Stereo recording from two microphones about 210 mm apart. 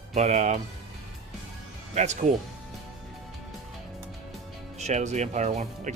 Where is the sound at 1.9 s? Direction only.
35° right (ahead or behind).